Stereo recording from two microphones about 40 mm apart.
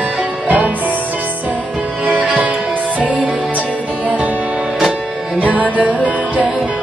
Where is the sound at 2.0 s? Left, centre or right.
Right.